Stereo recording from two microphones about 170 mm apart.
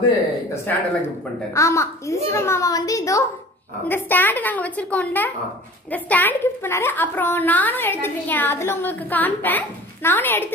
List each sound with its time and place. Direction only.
0.7 s a woman's voice: 10° left (ahead or behind)